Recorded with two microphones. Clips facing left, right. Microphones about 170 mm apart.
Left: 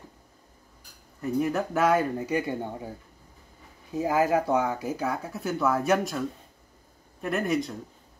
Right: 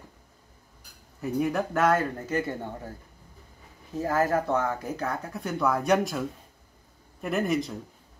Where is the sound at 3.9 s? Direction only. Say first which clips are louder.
Left 2 dB; 10° left (ahead or behind).